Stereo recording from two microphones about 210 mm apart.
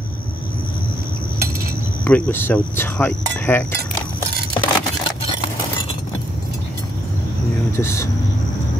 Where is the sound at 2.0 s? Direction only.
5° left (ahead or behind).